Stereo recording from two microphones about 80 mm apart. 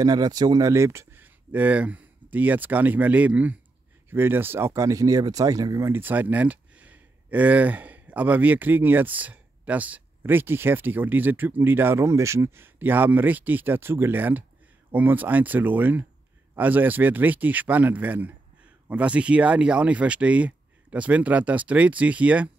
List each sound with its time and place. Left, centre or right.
0.0 s speech: right
0.7 s speech: right
1.1 s speech: right
5.9 s speech: right